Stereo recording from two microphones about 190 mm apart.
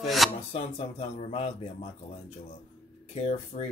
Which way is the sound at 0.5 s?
30° left (ahead or behind).